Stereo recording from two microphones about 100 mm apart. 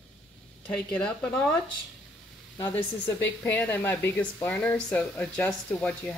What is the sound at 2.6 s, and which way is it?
Speech, 20° left (ahead or behind).